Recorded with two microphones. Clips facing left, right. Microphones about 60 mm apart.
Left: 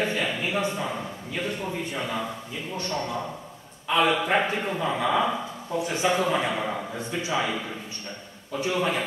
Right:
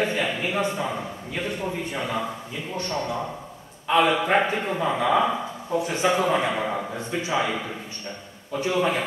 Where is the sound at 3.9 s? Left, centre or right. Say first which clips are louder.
Right 2 dB; centre.